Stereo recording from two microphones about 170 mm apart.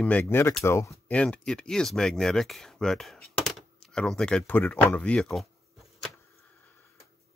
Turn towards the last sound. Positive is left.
turn(degrees=0)  # may be behind; listen again after turning